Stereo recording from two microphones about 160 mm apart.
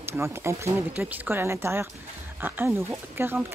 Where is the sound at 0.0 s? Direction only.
15° right (ahead or behind).